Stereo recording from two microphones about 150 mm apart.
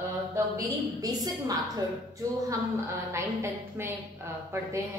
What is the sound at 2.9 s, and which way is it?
A woman's voice, 20° right (ahead or behind).